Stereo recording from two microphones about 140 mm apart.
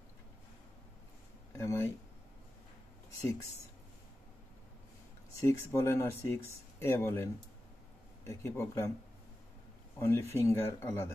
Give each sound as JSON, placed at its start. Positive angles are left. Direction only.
{"t": 1.5, "sound": "a sound", "side_deg": 20}
{"t": 3.2, "sound": "speech", "side_deg": 25}
{"t": 5.4, "sound": "speech", "side_deg": 20}
{"t": 8.3, "sound": "speech", "side_deg": 20}
{"t": 9.9, "sound": "speech", "side_deg": 20}